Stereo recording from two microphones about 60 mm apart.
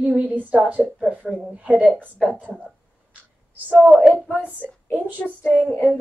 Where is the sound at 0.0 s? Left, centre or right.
Right.